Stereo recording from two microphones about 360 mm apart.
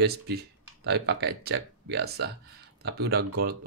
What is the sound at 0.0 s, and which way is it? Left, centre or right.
Speech, right.